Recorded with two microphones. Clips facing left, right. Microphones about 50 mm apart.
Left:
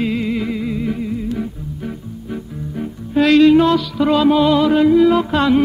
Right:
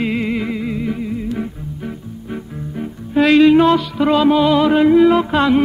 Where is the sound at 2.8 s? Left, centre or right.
Centre.